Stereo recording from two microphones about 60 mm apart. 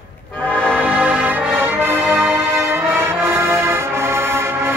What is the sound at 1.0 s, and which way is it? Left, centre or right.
Music, right.